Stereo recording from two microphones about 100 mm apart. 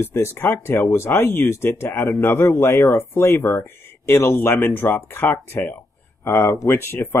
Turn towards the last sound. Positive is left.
turn(degrees=25)  # may be behind; listen again after turning